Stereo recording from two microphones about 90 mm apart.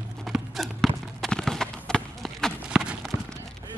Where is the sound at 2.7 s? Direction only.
10° right (ahead or behind).